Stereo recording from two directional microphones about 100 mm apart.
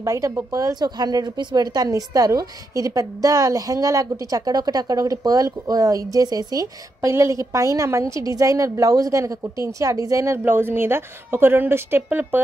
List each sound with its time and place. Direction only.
0.0 s a woman's voice: 30° right (ahead or behind)